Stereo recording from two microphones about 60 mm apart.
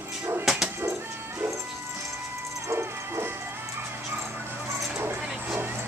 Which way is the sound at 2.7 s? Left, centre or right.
Right.